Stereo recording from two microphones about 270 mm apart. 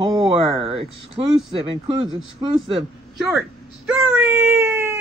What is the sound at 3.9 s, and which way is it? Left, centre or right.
Speech, centre.